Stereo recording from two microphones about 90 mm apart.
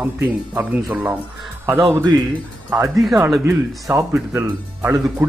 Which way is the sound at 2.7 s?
40° right (ahead or behind).